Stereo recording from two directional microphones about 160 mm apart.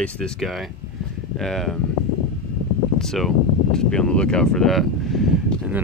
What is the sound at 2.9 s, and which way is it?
Speech, centre (ahead or behind).